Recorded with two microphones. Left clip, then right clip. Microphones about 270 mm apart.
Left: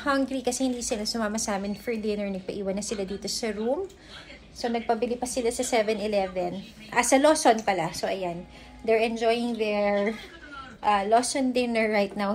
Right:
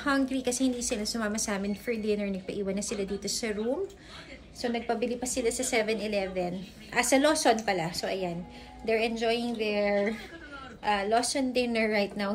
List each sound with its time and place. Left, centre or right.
0.0 s a woman's voice: centre
4.6 s a woman's voice: centre; by 12.3 s left